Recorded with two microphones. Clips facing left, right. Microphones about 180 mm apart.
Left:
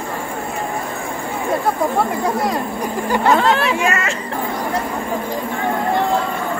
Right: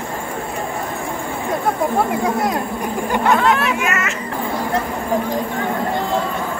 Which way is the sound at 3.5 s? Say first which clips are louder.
Left 2 dB; 30° left (ahead or behind).